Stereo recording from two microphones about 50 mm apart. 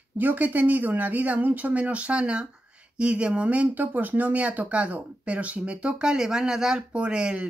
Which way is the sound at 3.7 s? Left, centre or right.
Right.